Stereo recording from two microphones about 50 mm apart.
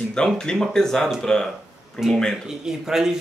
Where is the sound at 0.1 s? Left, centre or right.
Centre.